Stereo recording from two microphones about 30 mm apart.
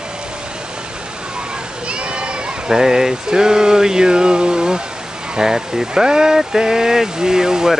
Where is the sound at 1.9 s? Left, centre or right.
Right.